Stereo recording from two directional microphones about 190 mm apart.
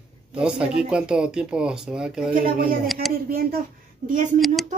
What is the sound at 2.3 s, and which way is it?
Speech, 50° right (ahead or behind).